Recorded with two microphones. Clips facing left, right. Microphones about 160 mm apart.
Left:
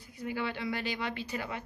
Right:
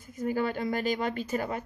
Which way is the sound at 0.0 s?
45° right (ahead or behind).